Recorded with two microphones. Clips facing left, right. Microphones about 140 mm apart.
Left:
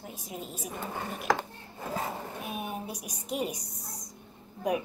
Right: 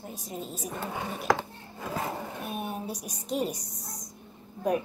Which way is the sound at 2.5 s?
5° left (ahead or behind).